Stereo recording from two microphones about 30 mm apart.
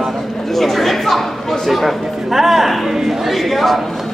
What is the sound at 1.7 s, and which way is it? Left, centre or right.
Speech, centre.